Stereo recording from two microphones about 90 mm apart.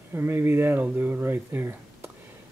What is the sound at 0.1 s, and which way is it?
Speech, 25° right (ahead or behind).